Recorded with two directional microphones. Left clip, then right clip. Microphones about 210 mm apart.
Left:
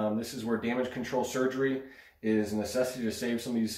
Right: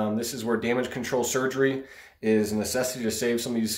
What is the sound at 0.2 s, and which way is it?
Speech, 45° right (ahead or behind).